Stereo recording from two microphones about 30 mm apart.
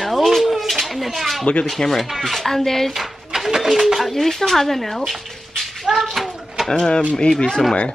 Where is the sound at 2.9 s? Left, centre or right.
Centre.